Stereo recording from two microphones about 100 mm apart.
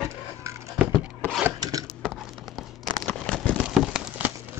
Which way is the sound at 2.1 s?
Centre (ahead or behind).